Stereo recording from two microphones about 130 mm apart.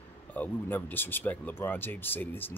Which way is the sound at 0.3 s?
15° left (ahead or behind).